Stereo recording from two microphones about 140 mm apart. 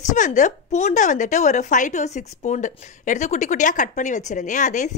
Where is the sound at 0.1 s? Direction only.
60° left (ahead or behind).